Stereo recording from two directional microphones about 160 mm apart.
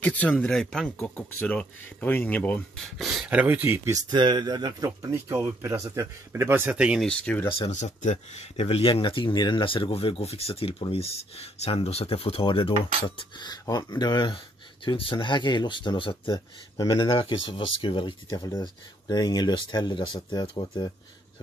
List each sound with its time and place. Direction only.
0.0 s speech: 10° left (ahead or behind)
3.1 s speech: 5° right (ahead or behind)
4.1 s speech: 25° right (ahead or behind); by 7.1 s 5° right (ahead or behind)
7.1 s speech: 5° left (ahead or behind)
7.4 s speech: 35° left (ahead or behind)
7.7 s speech: 50° left (ahead or behind); by 20.9 s 30° left (ahead or behind)